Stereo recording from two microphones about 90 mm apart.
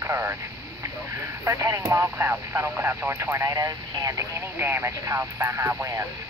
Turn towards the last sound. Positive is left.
turn(degrees=-35)  # may be behind; listen again after turning